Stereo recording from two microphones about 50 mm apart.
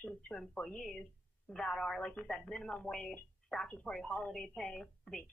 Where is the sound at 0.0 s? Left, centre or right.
Centre.